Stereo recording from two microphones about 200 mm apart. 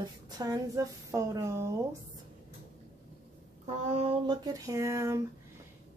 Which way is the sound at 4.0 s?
20° right (ahead or behind).